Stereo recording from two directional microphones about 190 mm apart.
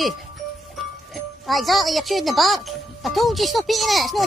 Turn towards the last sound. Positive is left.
turn(degrees=0)  # may be behind; listen again after turning